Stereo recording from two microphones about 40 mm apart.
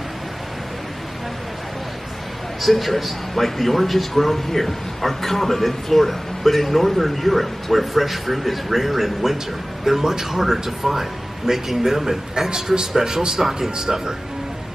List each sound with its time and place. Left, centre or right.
2.6 s a man's voice: centre